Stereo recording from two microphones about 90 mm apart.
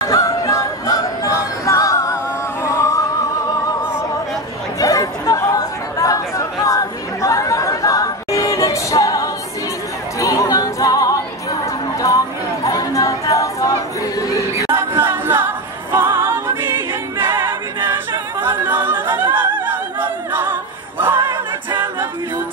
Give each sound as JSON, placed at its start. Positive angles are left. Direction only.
{"t": 0.0, "sound": "music", "side_deg": 40}
{"t": 4.7, "sound": "chatter", "side_deg": 40}
{"t": 10.1, "sound": "music", "side_deg": 35}
{"t": 12.6, "sound": "a sound", "side_deg": 40}
{"t": 14.7, "sound": "music", "side_deg": -25}
{"t": 17.2, "sound": "choir", "side_deg": -25}
{"t": 18.4, "sound": "a sound", "side_deg": -25}